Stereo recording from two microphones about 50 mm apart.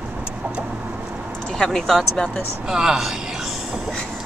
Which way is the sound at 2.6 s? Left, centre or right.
Centre.